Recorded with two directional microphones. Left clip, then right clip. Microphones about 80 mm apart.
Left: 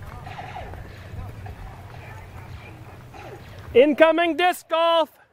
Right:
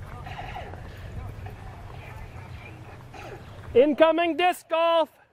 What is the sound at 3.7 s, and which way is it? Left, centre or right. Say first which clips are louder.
Speech: left 3 dB; left.